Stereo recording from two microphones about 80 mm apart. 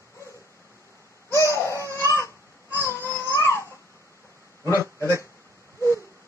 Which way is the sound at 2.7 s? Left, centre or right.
Left.